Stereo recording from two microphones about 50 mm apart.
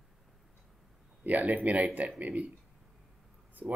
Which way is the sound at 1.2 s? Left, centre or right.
Right.